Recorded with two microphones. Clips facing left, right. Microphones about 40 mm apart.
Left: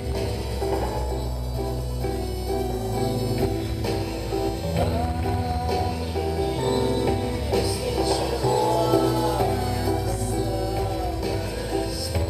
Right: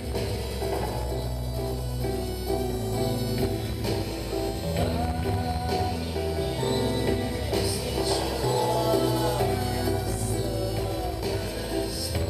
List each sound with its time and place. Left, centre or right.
2.5 s music: centre